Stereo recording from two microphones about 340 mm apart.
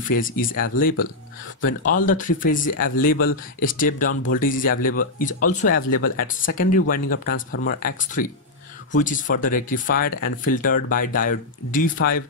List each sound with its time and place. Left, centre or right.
0.2 s speech: left